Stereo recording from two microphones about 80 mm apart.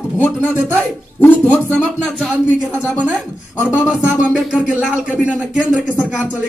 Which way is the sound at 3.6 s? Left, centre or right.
Centre.